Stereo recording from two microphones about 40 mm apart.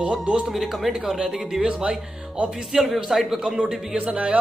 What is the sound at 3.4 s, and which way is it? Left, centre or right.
Speech, centre.